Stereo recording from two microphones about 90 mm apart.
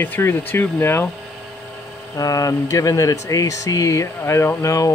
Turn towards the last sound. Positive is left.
turn(degrees=35)  # may be behind; listen again after turning